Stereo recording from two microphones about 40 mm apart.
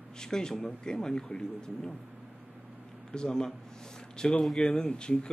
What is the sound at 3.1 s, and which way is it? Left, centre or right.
A man's voice, centre.